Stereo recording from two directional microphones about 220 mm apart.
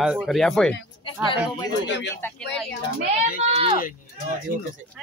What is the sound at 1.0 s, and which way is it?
Speech, 25° left (ahead or behind).